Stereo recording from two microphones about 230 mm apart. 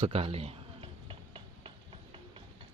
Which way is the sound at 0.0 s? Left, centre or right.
Right.